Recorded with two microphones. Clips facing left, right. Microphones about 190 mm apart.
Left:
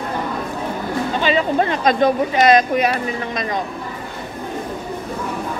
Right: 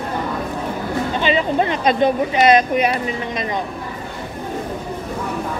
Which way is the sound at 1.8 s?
45° left (ahead or behind).